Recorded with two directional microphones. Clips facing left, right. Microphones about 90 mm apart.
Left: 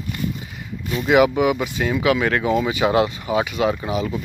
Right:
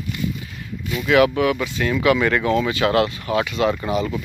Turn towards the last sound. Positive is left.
turn(degrees=5)  # may be behind; listen again after turning